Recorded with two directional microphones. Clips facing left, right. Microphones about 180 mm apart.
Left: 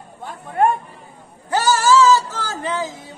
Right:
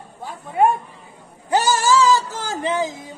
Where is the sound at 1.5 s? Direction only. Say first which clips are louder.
Left 1 dB; 15° right (ahead or behind).